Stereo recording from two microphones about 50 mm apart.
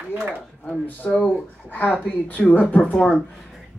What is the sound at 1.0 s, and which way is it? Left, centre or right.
Speech, centre.